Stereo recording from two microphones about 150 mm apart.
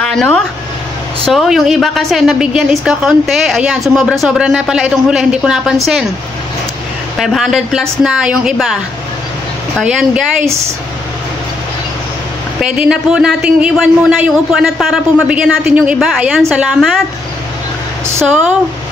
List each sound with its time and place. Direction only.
0.0 s a sound: 5° left (ahead or behind)
1.2 s a woman's voice: centre (ahead or behind)
7.2 s a woman's voice: centre (ahead or behind)
9.8 s a woman's voice: 5° right (ahead or behind)
10.4 s speech: 20° right (ahead or behind)
12.5 s a woman's voice: 5° right (ahead or behind)